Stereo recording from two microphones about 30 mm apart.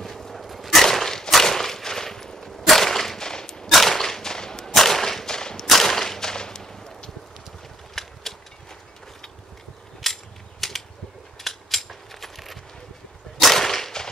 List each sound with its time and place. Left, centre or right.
0.0 s a sound: centre
0.8 s a sound: centre
1.3 s whip: centre
3.3 s gunshot: left
3.7 s whip: centre
4.0 s whip: centre
4.7 s whip: centre
5.7 s whip: centre
6.3 s a sound: left
10.0 s cap gun: centre
10.6 s a sound: centre
11.3 s coin: centre
13.4 s whip: centre